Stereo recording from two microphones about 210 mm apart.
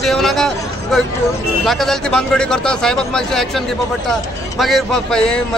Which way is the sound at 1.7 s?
Centre (ahead or behind).